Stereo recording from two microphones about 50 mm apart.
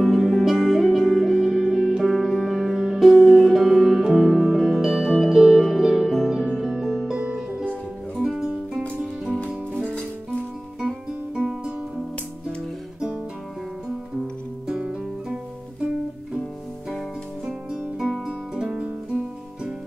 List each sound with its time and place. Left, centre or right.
0.0 s music: centre
6.4 s music: centre
7.2 s music: centre
10.8 s music: centre
14.7 s music: centre
17.5 s music: centre